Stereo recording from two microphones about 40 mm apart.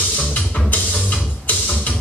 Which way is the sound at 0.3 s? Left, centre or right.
Left.